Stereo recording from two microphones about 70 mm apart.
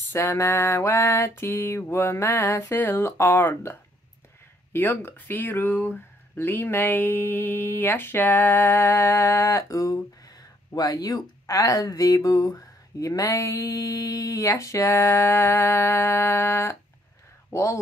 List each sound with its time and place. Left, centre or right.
0.1 s speech: left
4.7 s speech: left
12.5 s mantra: left
17.5 s speech: left